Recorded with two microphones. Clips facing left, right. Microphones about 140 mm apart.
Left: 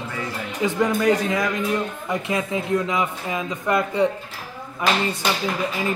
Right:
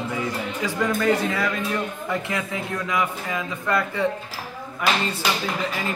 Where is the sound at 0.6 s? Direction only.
20° left (ahead or behind).